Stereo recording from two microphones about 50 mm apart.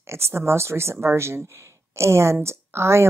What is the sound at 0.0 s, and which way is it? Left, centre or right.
A woman's voice, right.